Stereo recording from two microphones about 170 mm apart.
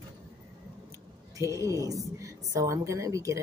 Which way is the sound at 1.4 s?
20° right (ahead or behind).